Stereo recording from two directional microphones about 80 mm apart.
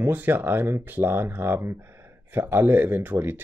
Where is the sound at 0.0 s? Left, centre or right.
Right.